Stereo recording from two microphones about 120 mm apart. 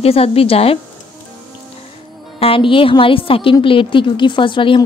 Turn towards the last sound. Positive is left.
turn(degrees=45)  # may be behind; listen again after turning